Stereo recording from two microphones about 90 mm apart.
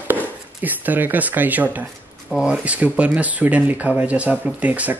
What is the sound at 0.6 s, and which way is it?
Speech, 20° right (ahead or behind).